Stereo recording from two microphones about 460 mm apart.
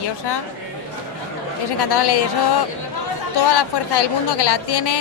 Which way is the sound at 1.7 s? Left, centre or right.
Left.